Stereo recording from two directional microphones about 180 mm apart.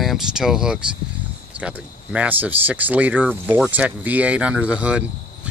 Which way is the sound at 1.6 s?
5° right (ahead or behind).